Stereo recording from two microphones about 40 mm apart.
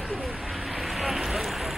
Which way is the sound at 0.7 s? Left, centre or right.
Centre.